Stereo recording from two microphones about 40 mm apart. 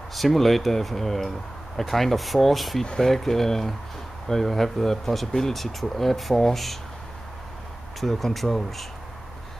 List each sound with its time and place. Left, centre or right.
0.1 s speech: centre
2.8 s speech: centre
8.0 s speech: centre